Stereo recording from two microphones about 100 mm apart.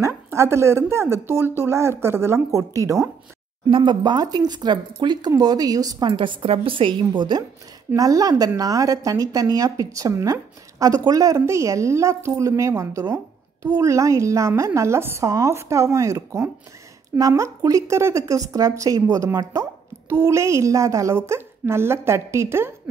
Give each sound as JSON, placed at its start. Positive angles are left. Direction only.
{"t": 0.0, "sound": "speech", "side_deg": -25}
{"t": 3.6, "sound": "a woman's voice", "side_deg": -50}
{"t": 7.9, "sound": "a woman's voice", "side_deg": -35}